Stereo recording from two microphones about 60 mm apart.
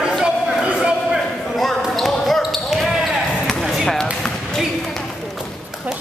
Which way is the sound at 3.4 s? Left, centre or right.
Centre.